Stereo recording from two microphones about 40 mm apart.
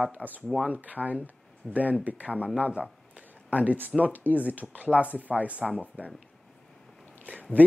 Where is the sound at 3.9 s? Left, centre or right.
Right.